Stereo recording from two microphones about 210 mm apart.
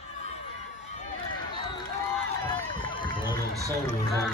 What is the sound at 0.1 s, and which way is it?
Crowd, 30° left (ahead or behind).